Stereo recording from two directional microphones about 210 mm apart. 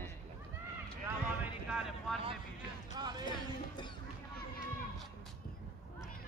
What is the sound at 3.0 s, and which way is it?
Speech, 20° right (ahead or behind).